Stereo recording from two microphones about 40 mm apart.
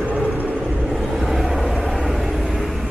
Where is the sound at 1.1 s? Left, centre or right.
Centre.